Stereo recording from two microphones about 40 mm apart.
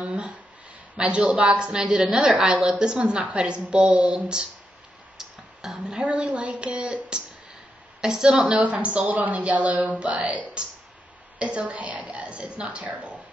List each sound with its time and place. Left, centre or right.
0.0 s a woman's voice: right
1.5 s a woman's voice: right
5.1 s a sound: centre
5.9 s a woman's voice: right
9.0 s a woman's voice: right